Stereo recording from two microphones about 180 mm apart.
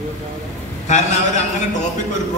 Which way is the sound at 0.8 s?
40° left (ahead or behind).